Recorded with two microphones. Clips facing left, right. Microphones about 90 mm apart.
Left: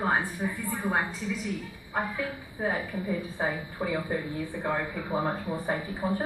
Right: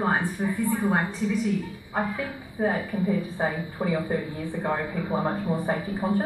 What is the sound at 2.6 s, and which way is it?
Speech, 5° right (ahead or behind).